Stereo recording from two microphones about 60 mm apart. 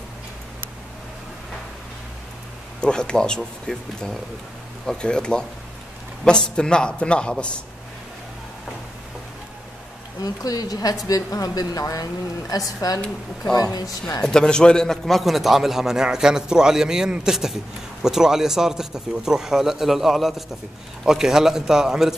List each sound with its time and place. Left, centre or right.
2.8 s speech: centre
10.2 s a woman's voice: left
14.2 s a man's voice: centre